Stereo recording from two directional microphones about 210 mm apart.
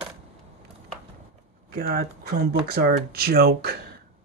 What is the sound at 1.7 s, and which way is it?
Speech, 45° right (ahead or behind).